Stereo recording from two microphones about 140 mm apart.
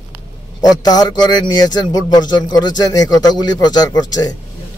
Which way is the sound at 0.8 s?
30° left (ahead or behind).